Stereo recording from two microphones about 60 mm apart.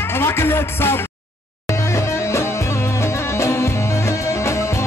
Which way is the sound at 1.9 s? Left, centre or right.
Left.